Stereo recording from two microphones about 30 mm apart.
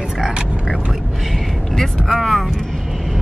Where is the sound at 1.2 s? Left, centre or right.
Centre.